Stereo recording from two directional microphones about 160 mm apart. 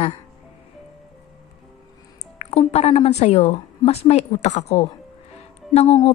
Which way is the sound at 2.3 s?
40° left (ahead or behind).